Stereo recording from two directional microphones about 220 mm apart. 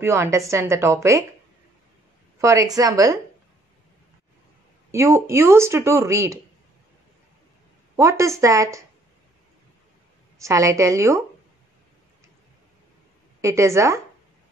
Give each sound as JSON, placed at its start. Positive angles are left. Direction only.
{"t": 0.0, "sound": "speech", "side_deg": -10}
{"t": 2.4, "sound": "speech", "side_deg": -15}
{"t": 4.9, "sound": "speech", "side_deg": -10}
{"t": 7.9, "sound": "speech", "side_deg": -15}
{"t": 10.4, "sound": "speech", "side_deg": -15}
{"t": 13.4, "sound": "speech", "side_deg": -15}